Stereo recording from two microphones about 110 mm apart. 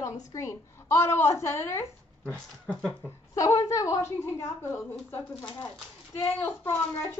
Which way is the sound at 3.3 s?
30° left (ahead or behind).